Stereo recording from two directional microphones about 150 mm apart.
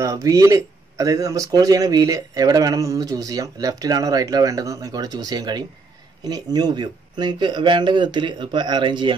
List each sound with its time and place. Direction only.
0.0 s a man's voice: 20° right (ahead or behind)